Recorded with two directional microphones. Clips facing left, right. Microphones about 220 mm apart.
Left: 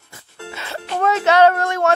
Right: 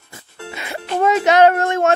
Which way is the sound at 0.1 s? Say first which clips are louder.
Right 1 dB; 15° right (ahead or behind).